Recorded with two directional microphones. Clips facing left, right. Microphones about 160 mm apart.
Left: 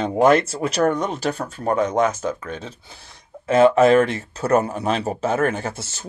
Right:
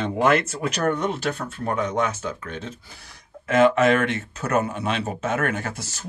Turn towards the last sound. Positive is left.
turn(degrees=25)  # may be behind; listen again after turning